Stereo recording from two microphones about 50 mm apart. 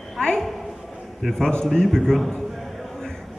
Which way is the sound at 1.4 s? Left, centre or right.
Centre.